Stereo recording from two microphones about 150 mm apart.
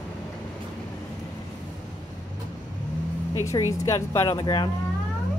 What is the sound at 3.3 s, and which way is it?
Speech, 20° left (ahead or behind).